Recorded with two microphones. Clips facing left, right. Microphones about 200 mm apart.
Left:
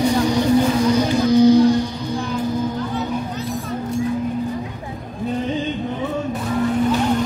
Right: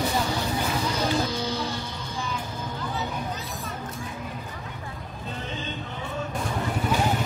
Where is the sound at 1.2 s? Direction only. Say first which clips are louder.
Left 17 dB; 15° left (ahead or behind).